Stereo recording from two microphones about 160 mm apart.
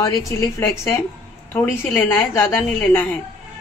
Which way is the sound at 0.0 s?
15° left (ahead or behind).